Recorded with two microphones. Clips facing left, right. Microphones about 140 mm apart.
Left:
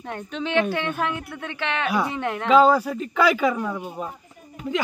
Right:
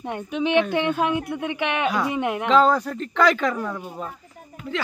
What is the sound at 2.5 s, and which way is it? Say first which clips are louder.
A man's voice: left 2 dB; 5° left (ahead or behind).